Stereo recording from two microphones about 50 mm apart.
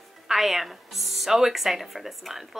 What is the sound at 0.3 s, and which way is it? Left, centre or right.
Speech, centre.